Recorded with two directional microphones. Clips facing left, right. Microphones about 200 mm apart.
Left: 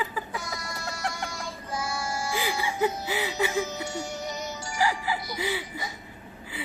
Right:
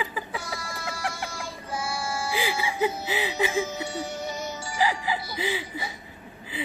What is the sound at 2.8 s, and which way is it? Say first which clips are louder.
Music: even; 15° right (ahead or behind).